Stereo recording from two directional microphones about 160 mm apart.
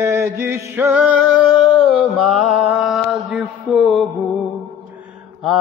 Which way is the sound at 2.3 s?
Centre (ahead or behind).